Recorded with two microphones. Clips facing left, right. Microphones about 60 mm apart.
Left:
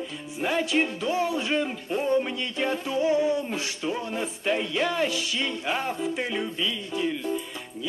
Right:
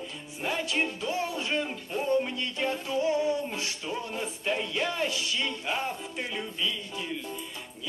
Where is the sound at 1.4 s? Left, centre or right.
Centre.